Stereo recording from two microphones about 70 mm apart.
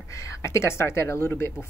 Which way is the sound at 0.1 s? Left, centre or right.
Left.